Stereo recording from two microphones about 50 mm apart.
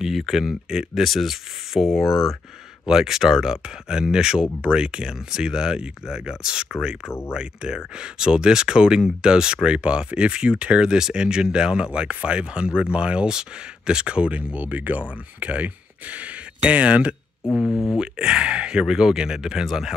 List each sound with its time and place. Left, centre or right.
0.0 s speech: centre
1.0 s speech: centre
7.1 s speech: left
7.3 s speech: centre
17.6 s speech: centre